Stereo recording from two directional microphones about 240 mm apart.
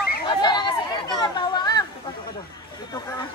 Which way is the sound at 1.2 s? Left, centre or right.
Centre.